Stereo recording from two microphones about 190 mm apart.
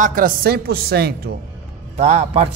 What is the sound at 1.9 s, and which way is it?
Speech, 35° right (ahead or behind).